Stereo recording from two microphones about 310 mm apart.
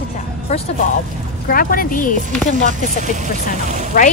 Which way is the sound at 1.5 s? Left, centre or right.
Left.